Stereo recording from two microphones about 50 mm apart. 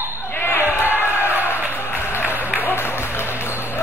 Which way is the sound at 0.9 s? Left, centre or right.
Left.